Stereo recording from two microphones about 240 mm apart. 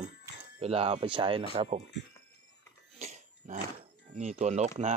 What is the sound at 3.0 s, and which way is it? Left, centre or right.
Cough, right.